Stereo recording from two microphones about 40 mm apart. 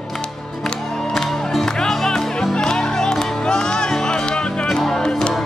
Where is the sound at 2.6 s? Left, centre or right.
Centre.